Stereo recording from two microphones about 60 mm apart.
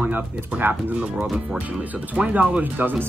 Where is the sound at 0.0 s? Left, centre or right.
Right.